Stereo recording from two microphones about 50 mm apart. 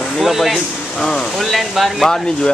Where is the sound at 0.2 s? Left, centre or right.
Centre.